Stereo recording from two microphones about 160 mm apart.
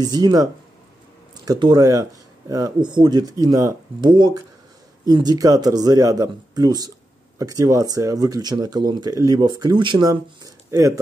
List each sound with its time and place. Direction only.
0.0 s speech: 25° right (ahead or behind)